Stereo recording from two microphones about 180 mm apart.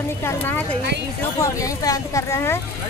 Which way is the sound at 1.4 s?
15° left (ahead or behind).